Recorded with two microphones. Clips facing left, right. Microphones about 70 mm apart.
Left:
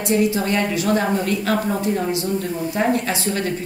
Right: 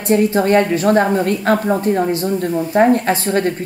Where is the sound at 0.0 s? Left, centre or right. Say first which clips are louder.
Right 5 dB; right.